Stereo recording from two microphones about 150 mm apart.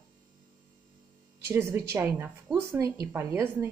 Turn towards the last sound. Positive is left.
turn(degrees=-15)  # may be behind; listen again after turning